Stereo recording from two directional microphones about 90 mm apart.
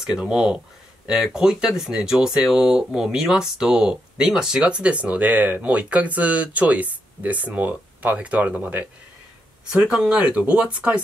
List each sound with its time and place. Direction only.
0.0 s speech: 10° right (ahead or behind)
9.8 s speech: 5° right (ahead or behind)